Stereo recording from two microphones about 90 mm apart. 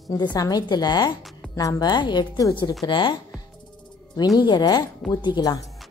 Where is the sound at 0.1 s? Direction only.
45° left (ahead or behind).